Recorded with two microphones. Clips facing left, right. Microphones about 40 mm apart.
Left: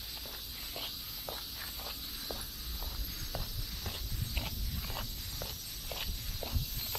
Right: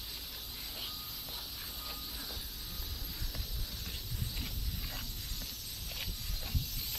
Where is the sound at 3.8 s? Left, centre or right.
Left.